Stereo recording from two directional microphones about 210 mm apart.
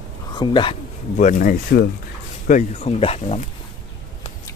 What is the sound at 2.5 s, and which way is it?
Speech, 30° left (ahead or behind).